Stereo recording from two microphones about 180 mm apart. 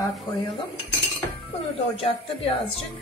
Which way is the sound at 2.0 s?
30° left (ahead or behind).